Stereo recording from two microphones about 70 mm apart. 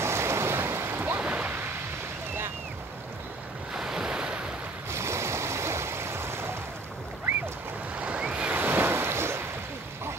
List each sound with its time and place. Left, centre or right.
0.0 s waves: right
1.2 s a sound: right
3.7 s waves: centre
4.9 s stream: right
8.0 s waves: centre
8.5 s waves: right